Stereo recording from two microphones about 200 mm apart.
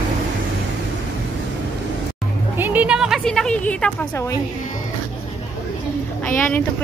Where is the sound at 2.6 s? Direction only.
10° right (ahead or behind); by 4.4 s 15° left (ahead or behind).